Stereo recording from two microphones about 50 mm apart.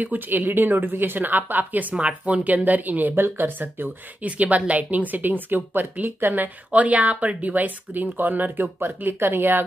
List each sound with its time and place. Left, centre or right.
0.0 s speech: right
4.3 s speech: right